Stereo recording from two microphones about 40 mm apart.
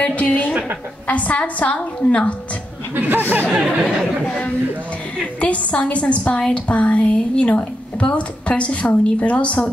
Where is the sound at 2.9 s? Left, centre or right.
Right.